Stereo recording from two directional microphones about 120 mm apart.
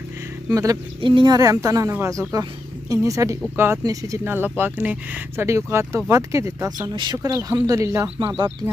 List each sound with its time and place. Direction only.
1.0 s a woman's voice: 40° right (ahead or behind)
4.2 s a woman's voice: 15° right (ahead or behind)
8.2 s speech: 40° right (ahead or behind)